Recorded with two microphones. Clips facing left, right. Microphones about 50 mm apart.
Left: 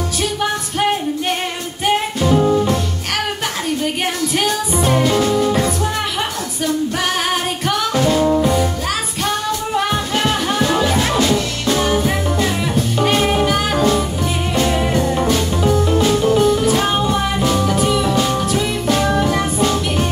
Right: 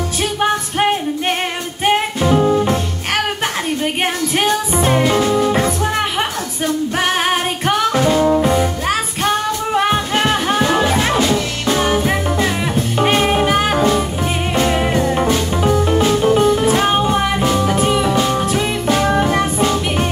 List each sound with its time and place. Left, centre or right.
0.4 s music: right